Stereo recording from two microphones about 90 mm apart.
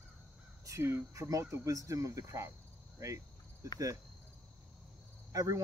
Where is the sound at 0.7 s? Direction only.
30° right (ahead or behind).